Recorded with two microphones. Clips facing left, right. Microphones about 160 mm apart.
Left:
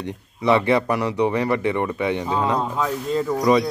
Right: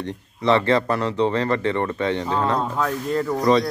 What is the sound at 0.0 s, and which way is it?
Speech, 15° left (ahead or behind).